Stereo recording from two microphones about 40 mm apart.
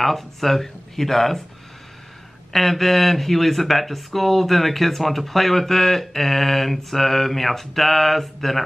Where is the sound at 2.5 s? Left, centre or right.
Centre.